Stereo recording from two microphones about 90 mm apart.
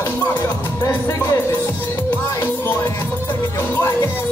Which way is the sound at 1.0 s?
25° left (ahead or behind).